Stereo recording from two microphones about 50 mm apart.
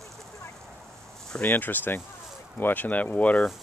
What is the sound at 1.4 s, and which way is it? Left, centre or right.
Speech, left.